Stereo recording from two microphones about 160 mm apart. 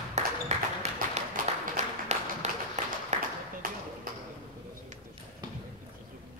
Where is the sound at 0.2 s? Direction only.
45° right (ahead or behind).